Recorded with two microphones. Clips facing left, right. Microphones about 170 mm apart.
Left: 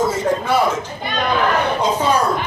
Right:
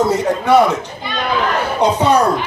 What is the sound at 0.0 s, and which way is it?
Speech, 70° right (ahead or behind).